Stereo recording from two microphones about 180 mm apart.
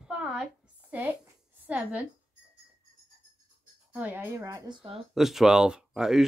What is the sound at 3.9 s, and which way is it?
Speech, 10° right (ahead or behind).